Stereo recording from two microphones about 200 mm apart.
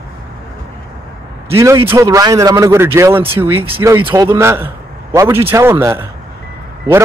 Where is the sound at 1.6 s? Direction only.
15° right (ahead or behind).